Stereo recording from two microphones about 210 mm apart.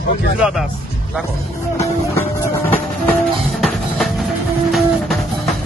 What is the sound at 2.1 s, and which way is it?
Music, 10° left (ahead or behind).